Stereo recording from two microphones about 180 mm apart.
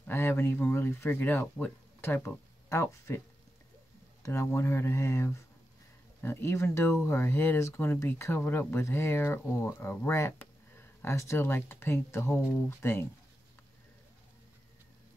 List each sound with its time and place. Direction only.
0.0 s speech: 15° left (ahead or behind)
4.2 s speech: 15° left (ahead or behind)